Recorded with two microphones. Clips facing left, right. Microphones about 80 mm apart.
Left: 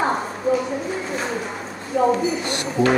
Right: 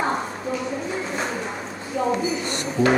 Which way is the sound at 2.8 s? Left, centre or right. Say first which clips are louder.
Left 1 dB; centre.